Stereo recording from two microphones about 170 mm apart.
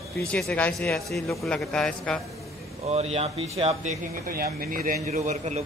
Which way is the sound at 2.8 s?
40° right (ahead or behind).